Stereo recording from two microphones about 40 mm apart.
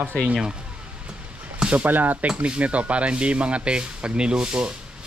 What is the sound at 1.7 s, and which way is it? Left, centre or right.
Speech, right.